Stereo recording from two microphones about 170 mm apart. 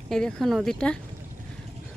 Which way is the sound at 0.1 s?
Centre (ahead or behind).